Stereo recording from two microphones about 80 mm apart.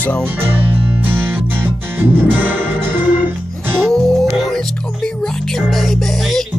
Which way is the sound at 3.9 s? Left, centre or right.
Centre.